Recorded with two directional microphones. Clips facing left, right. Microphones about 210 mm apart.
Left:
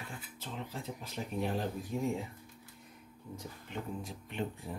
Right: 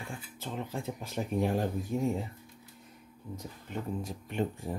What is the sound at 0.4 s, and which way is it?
Speech, 50° right (ahead or behind).